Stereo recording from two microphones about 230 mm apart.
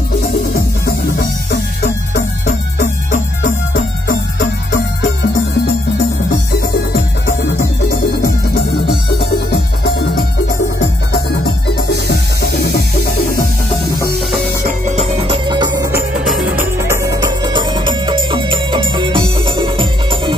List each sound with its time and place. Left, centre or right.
0.8 s music: left
6.9 s music: left
11.4 s music: left
14.9 s music: right